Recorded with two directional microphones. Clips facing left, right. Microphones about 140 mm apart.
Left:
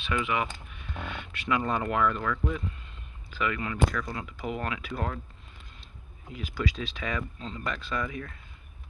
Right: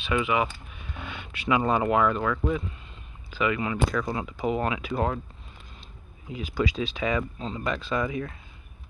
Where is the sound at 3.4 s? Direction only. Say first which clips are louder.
Right 3 dB; 15° right (ahead or behind).